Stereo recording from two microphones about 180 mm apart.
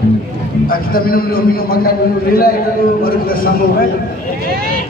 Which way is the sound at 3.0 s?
55° left (ahead or behind).